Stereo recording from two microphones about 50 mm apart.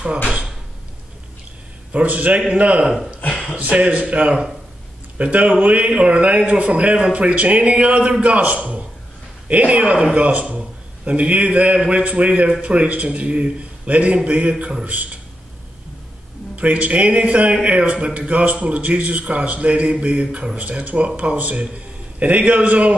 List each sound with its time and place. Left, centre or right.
1.9 s a man's voice: right
16.5 s a man's voice: right